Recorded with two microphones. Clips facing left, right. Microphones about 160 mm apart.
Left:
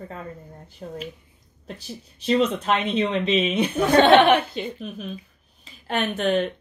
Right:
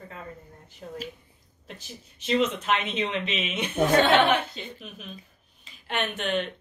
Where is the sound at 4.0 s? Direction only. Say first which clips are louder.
Left 7 dB; 70° left (ahead or behind).